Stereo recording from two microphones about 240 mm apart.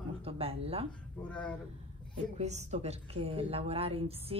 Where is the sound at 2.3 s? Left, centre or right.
Right.